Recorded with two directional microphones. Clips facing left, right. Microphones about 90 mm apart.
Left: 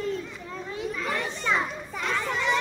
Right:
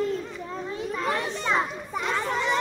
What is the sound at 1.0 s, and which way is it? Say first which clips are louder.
Children playing: right 3 dB; 40° right (ahead or behind).